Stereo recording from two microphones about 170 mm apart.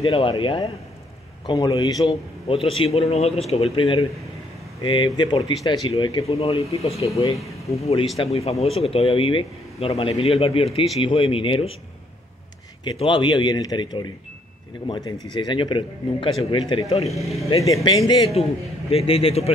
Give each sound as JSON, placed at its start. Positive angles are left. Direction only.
{"t": 0.1, "sound": "speech", "side_deg": 30}
{"t": 2.0, "sound": "a man's voice", "side_deg": 35}
{"t": 12.8, "sound": "speech", "side_deg": 25}
{"t": 17.2, "sound": "speech", "side_deg": 0}
{"t": 17.8, "sound": "speech", "side_deg": 25}
{"t": 18.9, "sound": "a man's voice", "side_deg": 35}